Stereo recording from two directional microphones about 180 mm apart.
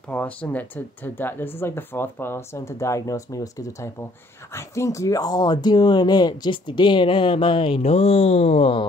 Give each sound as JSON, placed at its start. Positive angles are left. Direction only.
{"t": 0.1, "sound": "speech", "side_deg": 10}